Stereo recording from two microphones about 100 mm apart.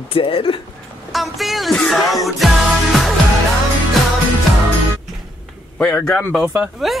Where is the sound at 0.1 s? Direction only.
60° left (ahead or behind).